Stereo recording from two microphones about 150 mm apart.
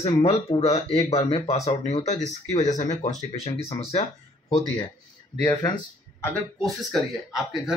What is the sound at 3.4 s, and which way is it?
A man's voice, 40° left (ahead or behind).